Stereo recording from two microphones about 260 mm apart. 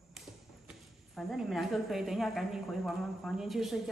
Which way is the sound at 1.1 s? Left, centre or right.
Centre.